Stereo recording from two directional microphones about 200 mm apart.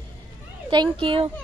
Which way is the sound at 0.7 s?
25° right (ahead or behind).